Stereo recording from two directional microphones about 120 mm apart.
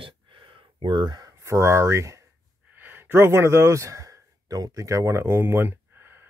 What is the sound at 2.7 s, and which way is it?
Speech, 15° right (ahead or behind).